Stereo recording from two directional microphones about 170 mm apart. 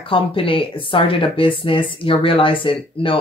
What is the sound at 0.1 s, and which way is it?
Speech, 30° left (ahead or behind).